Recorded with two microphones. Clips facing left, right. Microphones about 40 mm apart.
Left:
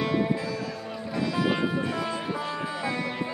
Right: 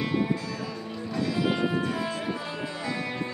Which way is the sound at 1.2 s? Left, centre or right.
Centre.